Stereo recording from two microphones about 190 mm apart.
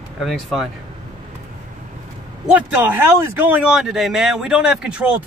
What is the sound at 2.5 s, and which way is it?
Speech, 10° right (ahead or behind).